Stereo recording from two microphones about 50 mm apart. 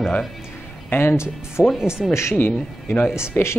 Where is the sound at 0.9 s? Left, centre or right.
Left.